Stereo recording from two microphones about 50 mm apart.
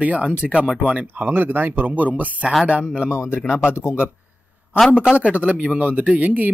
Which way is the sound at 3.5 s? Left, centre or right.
Left.